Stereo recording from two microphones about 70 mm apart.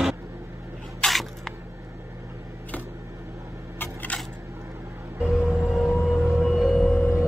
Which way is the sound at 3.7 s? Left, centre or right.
Left.